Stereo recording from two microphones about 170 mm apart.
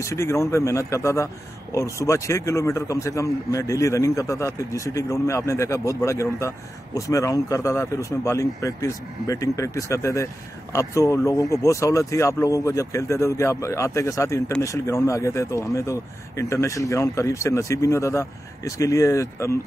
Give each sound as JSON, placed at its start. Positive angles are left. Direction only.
{"t": 0.0, "sound": "a man's voice", "side_deg": 15}